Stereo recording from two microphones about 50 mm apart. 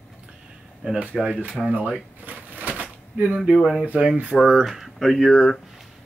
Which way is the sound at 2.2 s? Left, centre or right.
Right.